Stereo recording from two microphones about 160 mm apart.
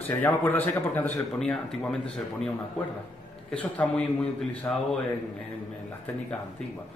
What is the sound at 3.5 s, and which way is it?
Speech, 10° left (ahead or behind).